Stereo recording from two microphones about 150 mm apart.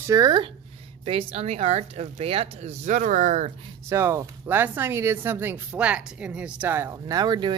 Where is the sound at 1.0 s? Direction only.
40° right (ahead or behind).